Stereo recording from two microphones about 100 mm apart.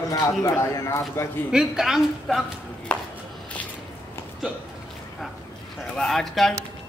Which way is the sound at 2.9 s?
10° left (ahead or behind).